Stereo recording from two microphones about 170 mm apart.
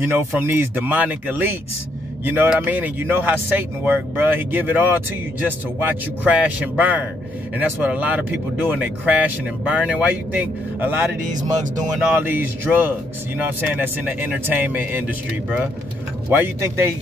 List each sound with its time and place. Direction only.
0.0 s speech: 15° right (ahead or behind)